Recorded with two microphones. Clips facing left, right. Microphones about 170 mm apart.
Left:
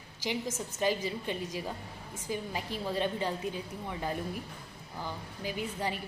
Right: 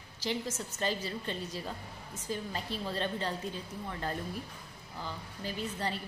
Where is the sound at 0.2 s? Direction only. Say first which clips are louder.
Left 1 dB; 15° left (ahead or behind).